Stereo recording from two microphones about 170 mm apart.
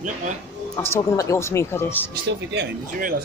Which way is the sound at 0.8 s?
15° left (ahead or behind).